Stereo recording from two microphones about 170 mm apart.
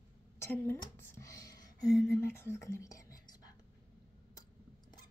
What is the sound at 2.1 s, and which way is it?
Speech, 15° left (ahead or behind).